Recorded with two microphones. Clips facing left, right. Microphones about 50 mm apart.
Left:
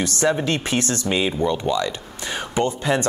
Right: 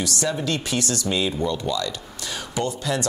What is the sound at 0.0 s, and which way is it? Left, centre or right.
Speech, left.